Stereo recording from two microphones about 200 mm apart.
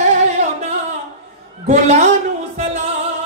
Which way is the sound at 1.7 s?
35° right (ahead or behind).